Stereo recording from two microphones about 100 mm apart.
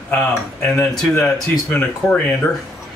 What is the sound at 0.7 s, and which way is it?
Speech, 25° left (ahead or behind).